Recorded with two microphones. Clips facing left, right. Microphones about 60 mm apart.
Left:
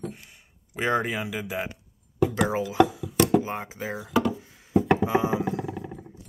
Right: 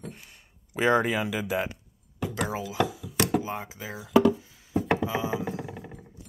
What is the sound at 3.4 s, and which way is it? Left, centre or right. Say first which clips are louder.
Speech: left 3 dB; left.